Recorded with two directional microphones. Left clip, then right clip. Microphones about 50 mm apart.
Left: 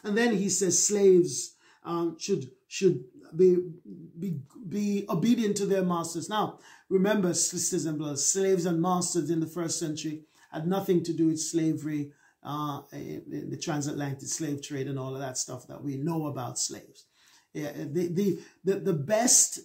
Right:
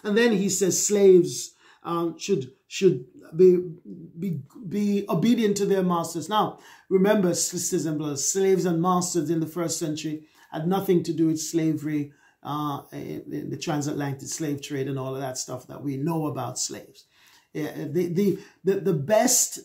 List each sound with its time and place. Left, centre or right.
0.0 s speech: right
4.6 s speech: centre